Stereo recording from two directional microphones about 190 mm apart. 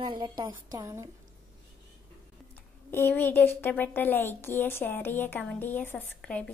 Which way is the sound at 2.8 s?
10° left (ahead or behind).